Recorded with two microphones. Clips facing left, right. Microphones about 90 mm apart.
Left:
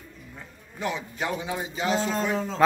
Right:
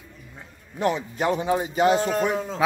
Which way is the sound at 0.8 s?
45° right (ahead or behind).